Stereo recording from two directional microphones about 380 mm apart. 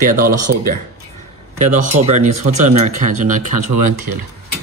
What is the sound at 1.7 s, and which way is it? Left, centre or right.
Speech, centre.